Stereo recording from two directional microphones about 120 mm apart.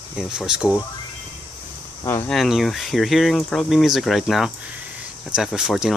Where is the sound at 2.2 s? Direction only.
Centre (ahead or behind).